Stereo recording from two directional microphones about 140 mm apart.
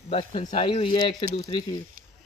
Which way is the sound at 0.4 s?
55° left (ahead or behind).